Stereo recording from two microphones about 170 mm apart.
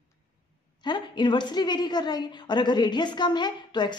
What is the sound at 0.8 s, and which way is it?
A woman's voice, 25° left (ahead or behind).